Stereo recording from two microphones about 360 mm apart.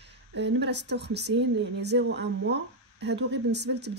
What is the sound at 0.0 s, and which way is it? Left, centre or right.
A woman's voice, right.